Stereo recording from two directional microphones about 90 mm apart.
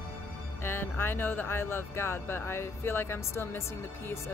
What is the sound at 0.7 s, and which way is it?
Speech, 25° left (ahead or behind).